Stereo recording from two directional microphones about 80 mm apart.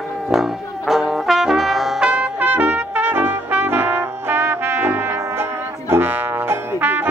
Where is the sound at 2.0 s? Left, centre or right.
Centre.